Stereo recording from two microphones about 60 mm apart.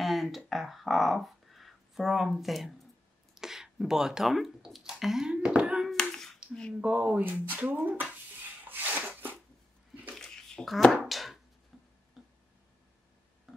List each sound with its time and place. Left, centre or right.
0.0 s music: centre
3.3 s speech: centre
5.3 s a sound: centre
5.9 s hands: centre
6.8 s speech: right
8.6 s a sound: right
10.1 s a sound: centre
11.1 s chopping: centre
11.7 s tick-tock: centre